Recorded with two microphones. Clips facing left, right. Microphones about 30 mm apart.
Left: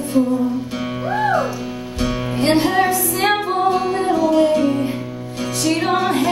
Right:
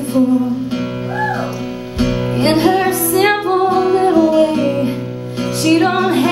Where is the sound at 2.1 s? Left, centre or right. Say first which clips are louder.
Right 2 dB; right.